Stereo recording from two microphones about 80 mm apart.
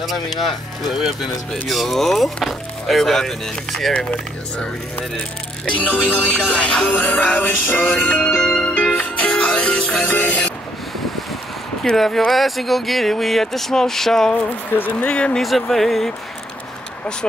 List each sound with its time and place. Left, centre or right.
0.0 s speech: centre
3.9 s speech: centre
5.7 s speech: centre
6.5 s music: centre
11.8 s speech: centre
14.8 s speech: centre
15.4 s speech: centre